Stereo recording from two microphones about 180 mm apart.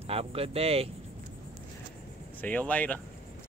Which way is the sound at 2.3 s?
10° left (ahead or behind).